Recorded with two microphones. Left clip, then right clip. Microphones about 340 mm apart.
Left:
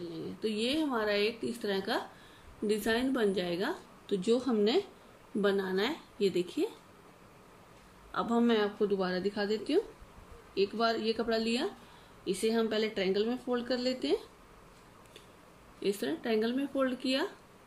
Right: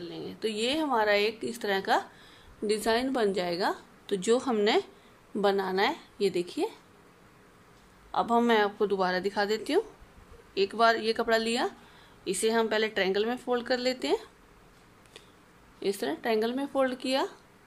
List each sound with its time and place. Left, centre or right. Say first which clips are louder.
0.0 s speech: right 3 dB; right
8.1 s speech: right 5 dB; centre
15.8 s speech: right 3 dB; centre